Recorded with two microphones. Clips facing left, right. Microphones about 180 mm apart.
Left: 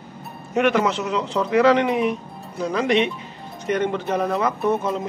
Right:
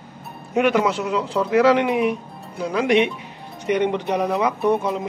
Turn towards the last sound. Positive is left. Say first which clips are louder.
# right 2 dB
turn(degrees=-15)  # may be behind; listen again after turning